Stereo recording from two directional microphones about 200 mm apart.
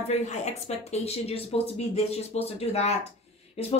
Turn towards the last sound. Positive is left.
turn(degrees=30)  # may be behind; listen again after turning